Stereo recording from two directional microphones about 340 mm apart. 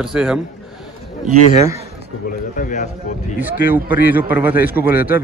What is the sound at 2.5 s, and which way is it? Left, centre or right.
Speech, left.